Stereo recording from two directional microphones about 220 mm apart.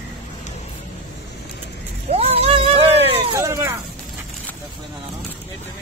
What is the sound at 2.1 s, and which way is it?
Vehicle, 25° right (ahead or behind).